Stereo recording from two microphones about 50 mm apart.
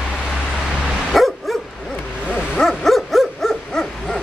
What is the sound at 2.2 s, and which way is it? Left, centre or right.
Bow-wow, centre.